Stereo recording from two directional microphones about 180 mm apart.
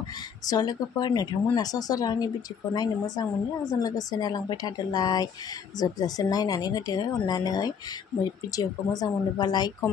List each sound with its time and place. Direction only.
0.5 s speech: 20° left (ahead or behind)